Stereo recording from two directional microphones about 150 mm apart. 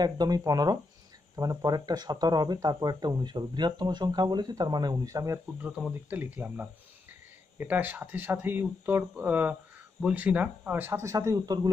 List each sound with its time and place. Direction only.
0.0 s speech: 25° right (ahead or behind)
5.6 s speech: 10° right (ahead or behind); by 11.7 s 25° right (ahead or behind)